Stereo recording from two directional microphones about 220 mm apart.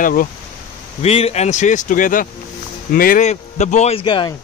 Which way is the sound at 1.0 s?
30° left (ahead or behind).